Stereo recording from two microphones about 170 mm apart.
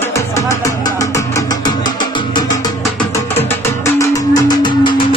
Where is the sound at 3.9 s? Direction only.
20° left (ahead or behind).